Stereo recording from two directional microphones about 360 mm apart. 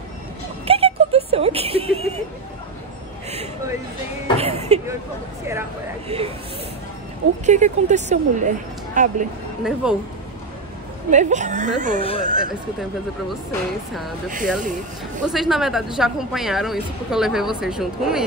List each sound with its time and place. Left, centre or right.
0.7 s a sound: centre
4.4 s a sound: centre
6.0 s speech: centre
7.4 s speech: centre
9.8 s a woman's voice: centre
11.1 s speech: centre
12.0 s speech: centre
13.3 s a woman's voice: centre
14.6 s speech: right
15.2 s a woman's voice: centre